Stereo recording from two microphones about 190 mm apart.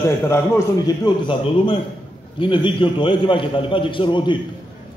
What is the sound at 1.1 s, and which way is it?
A man's voice, 25° left (ahead or behind).